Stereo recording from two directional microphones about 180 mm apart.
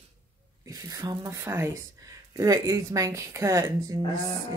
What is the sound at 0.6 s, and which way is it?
A woman's voice, 20° right (ahead or behind).